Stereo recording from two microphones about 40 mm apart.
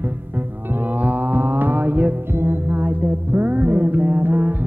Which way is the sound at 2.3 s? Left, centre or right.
Right.